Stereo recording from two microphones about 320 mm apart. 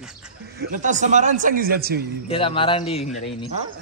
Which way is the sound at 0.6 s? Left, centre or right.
Right.